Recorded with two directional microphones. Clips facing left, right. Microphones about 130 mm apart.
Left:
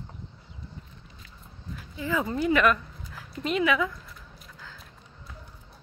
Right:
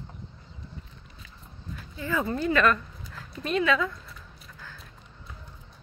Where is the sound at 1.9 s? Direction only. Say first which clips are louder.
Even; 15° left (ahead or behind).